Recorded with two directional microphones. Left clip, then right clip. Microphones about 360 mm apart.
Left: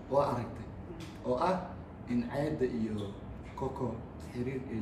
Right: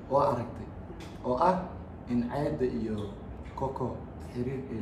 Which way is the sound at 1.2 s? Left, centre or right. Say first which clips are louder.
Right 5 dB; centre.